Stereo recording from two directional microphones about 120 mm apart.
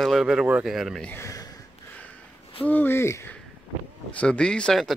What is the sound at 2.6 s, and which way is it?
Speech, 15° left (ahead or behind).